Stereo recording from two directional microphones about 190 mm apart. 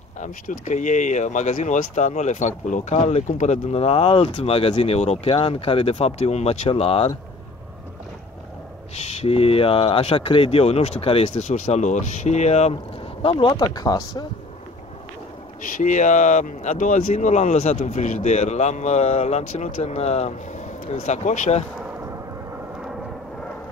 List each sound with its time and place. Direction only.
0.2 s speech: 40° left (ahead or behind)
9.2 s speech: 30° left (ahead or behind)
15.8 s speech: 40° left (ahead or behind)